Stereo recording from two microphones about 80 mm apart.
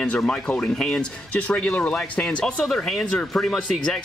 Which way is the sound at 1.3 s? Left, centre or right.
Centre.